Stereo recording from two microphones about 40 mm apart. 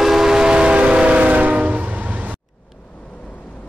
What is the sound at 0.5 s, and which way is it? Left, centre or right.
Train, right.